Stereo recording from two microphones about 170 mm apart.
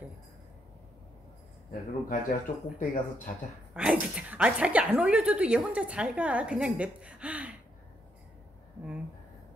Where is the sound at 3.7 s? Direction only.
5° right (ahead or behind).